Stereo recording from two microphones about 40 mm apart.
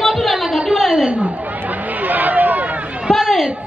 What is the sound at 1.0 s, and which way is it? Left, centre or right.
Chatter, right.